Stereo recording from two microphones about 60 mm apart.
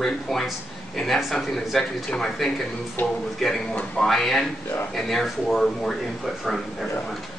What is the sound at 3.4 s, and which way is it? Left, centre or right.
Speech, centre.